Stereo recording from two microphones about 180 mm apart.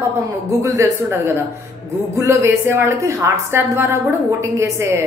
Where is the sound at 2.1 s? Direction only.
15° right (ahead or behind).